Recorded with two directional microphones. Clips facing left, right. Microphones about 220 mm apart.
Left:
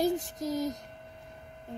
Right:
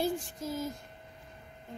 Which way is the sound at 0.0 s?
40° left (ahead or behind).